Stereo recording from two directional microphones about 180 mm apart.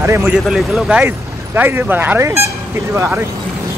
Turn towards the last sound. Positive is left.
turn(degrees=-15)  # may be behind; listen again after turning